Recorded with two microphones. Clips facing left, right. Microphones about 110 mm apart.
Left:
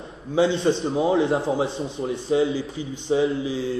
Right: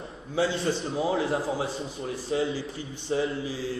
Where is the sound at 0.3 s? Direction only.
20° left (ahead or behind).